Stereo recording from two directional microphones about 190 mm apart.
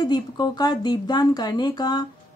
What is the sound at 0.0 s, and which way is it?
Speech, 20° left (ahead or behind).